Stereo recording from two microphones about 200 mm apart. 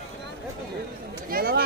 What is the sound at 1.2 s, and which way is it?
Speech, 50° right (ahead or behind).